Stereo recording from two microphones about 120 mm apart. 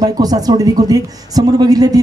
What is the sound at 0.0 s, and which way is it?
Speech, 30° right (ahead or behind).